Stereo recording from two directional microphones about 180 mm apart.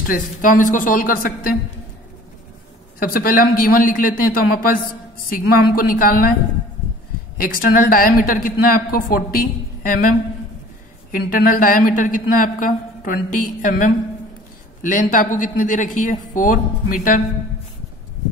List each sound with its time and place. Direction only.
0.0 s a woman's voice: 50° left (ahead or behind)
3.0 s a woman's voice: 50° left (ahead or behind)
7.3 s a woman's voice: 50° left (ahead or behind)
11.1 s a woman's voice: 50° left (ahead or behind)